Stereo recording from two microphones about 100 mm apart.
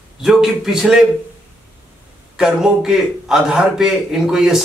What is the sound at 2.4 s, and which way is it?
Speech, 5° right (ahead or behind).